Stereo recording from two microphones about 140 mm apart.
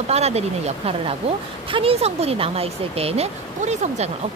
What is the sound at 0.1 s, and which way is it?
Speech, 50° right (ahead or behind).